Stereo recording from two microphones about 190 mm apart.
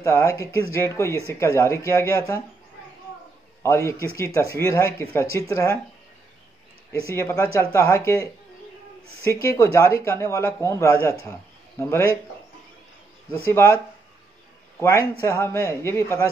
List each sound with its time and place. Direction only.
0.0 s speech: 15° left (ahead or behind)
3.6 s speech: 15° left (ahead or behind)
7.2 s speech: 15° left (ahead or behind)
13.5 s speech: 15° left (ahead or behind)
14.8 s speech: 15° left (ahead or behind)